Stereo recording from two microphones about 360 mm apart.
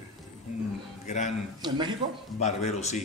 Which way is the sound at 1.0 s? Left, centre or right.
Centre.